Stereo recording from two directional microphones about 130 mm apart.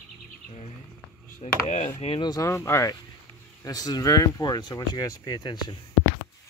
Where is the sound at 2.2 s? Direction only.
25° left (ahead or behind).